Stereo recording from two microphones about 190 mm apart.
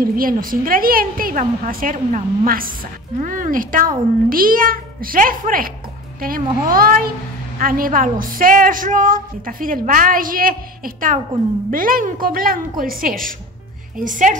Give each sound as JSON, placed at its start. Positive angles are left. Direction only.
{"t": 0.0, "sound": "a woman's voice", "side_deg": -50}